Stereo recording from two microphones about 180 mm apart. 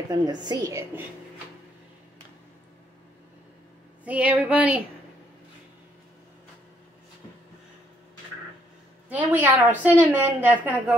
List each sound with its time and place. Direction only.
0.1 s a woman's voice: 20° right (ahead or behind)
4.0 s a woman's voice: 5° right (ahead or behind)
9.1 s a woman's voice: 10° right (ahead or behind)